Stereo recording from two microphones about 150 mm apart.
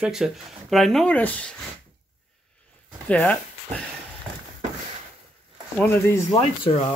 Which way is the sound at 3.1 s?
10° left (ahead or behind).